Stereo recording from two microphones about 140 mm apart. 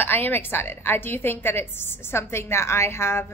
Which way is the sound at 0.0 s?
15° left (ahead or behind).